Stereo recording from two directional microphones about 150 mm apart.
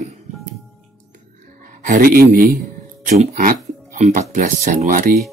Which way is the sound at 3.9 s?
55° right (ahead or behind).